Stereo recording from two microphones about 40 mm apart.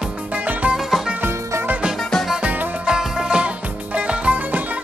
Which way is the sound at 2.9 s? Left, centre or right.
Right.